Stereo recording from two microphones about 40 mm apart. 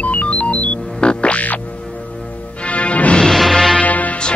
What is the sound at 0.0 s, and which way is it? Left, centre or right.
Music, left.